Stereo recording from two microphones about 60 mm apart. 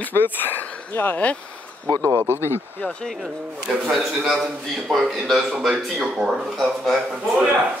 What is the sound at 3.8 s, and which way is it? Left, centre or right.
A man's voice, centre.